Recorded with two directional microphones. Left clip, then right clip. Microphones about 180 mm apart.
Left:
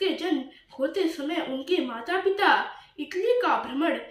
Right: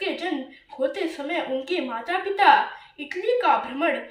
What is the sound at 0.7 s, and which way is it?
A woman's voice, 15° right (ahead or behind).